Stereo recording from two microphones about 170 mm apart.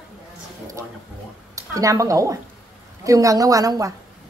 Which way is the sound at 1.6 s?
20° right (ahead or behind).